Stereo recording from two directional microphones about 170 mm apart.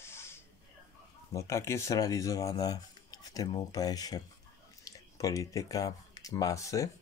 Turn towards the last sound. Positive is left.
turn(degrees=20)  # may be behind; listen again after turning